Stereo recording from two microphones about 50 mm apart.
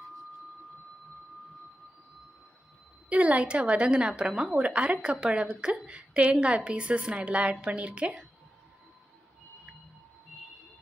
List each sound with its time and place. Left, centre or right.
3.1 s a woman's voice: right
4.3 s a woman's voice: centre
4.6 s a woman's voice: right